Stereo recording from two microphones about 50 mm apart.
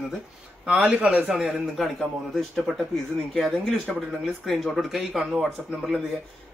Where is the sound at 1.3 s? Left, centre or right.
Centre.